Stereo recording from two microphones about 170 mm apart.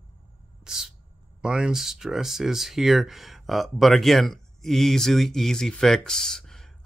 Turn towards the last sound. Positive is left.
turn(degrees=0)  # may be behind; listen again after turning